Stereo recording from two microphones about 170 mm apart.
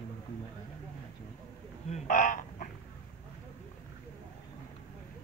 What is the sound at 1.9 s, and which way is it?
Speech, 50° left (ahead or behind).